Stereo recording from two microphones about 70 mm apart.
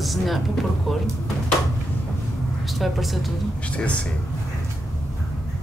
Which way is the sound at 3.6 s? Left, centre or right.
Centre.